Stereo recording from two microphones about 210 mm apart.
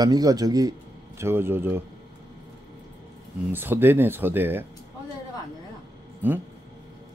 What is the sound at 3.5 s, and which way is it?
Speech, 10° right (ahead or behind).